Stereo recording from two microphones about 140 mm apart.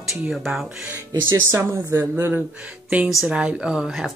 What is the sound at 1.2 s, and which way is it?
Speech, 20° right (ahead or behind).